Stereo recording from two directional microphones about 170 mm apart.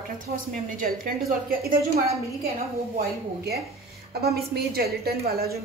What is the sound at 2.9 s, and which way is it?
A woman's voice, 65° right (ahead or behind).